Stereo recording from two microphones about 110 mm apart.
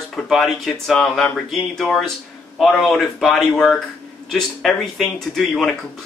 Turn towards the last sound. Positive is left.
turn(degrees=5)  # may be behind; listen again after turning